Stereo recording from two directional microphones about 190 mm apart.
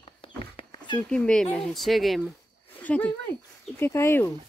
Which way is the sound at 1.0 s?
5° left (ahead or behind).